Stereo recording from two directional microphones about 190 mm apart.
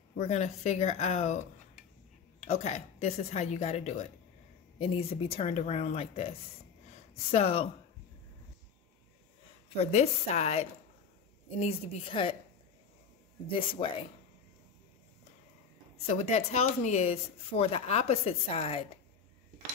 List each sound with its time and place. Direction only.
0.3 s speech: 35° left (ahead or behind)
2.4 s speech: 35° left (ahead or behind)
9.8 s a woman's voice: 35° left (ahead or behind)
13.5 s a woman's voice: 25° left (ahead or behind)
16.1 s speech: 35° left (ahead or behind)